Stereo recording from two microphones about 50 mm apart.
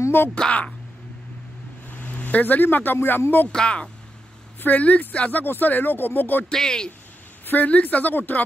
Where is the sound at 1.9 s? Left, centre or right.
Left.